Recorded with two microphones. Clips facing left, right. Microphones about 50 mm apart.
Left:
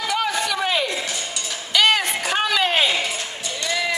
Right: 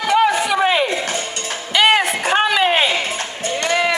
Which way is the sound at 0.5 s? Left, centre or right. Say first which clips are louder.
Right 6 dB; right.